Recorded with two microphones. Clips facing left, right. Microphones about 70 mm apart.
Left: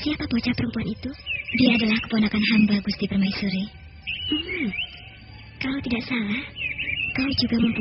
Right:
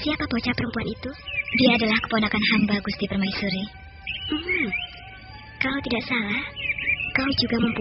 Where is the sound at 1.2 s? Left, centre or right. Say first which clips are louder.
Even; right.